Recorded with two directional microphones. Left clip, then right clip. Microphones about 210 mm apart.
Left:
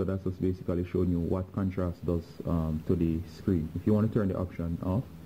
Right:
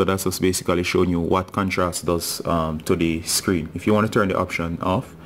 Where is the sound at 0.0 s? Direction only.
25° right (ahead or behind).